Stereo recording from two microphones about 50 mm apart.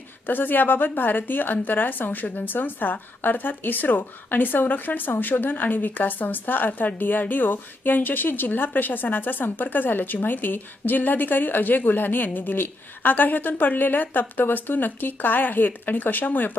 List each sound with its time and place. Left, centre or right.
0.3 s speech: left